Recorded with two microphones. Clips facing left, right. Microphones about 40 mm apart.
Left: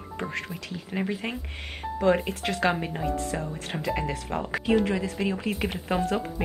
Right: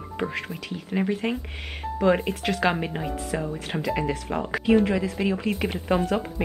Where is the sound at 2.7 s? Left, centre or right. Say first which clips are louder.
Right 1 dB; centre.